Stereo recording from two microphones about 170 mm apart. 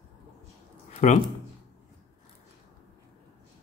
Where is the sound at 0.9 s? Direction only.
40° left (ahead or behind).